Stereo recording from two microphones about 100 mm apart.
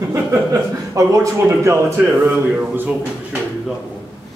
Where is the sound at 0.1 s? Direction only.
30° right (ahead or behind).